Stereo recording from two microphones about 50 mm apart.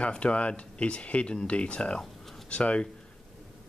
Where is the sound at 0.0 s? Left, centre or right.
Left.